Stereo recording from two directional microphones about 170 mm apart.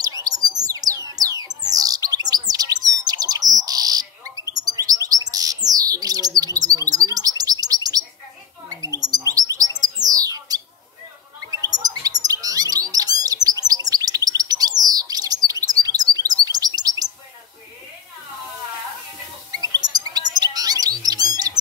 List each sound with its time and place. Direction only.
0.0 s music: 20° right (ahead or behind)
2.5 s bird: 20° right (ahead or behind)
11.5 s chirp: 20° right (ahead or behind)
19.5 s bird: 20° right (ahead or behind)